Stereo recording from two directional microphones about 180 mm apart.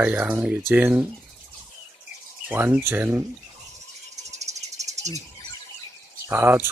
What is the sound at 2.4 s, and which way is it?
Speech, 10° right (ahead or behind).